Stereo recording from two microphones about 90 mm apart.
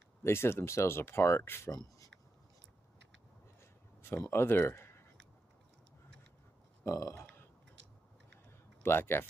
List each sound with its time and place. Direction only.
0.2 s speech: 30° left (ahead or behind)
1.7 s speech: 45° left (ahead or behind)
4.3 s speech: 25° left (ahead or behind)
6.8 s speech: 35° left (ahead or behind)
8.5 s a sound: 25° left (ahead or behind)